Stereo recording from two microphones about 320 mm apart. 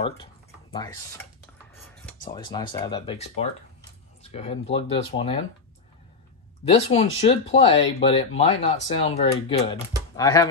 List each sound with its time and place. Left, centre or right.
0.0 s speech: centre
6.7 s speech: centre